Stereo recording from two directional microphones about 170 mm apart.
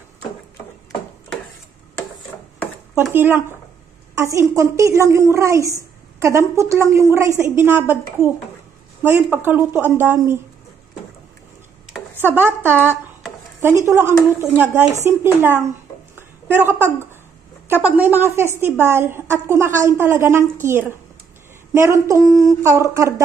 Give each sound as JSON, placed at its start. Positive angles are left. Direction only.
{"t": 3.0, "sound": "a woman's voice", "side_deg": -15}
{"t": 12.3, "sound": "a woman's voice", "side_deg": -15}
{"t": 16.2, "sound": "a sound", "side_deg": -10}
{"t": 17.6, "sound": "a woman's voice", "side_deg": -10}